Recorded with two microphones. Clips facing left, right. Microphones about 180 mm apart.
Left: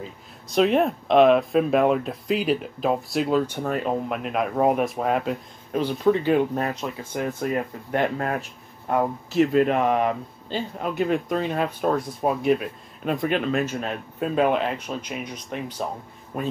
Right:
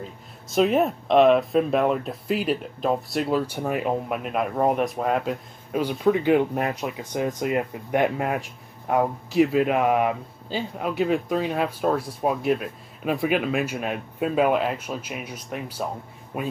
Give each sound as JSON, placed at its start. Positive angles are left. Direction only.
{"t": 0.0, "sound": "speech", "side_deg": 0}